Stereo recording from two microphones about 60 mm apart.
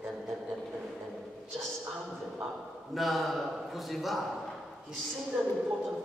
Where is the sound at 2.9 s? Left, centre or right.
Centre.